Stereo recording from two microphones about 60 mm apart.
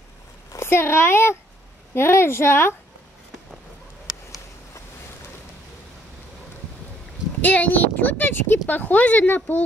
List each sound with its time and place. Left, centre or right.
0.7 s speech: left
7.4 s speech: left